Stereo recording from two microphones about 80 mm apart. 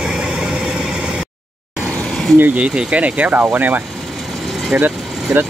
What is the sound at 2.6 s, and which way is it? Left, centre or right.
Speech, centre.